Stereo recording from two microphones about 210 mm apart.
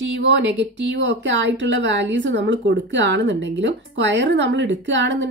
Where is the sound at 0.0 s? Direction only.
60° right (ahead or behind).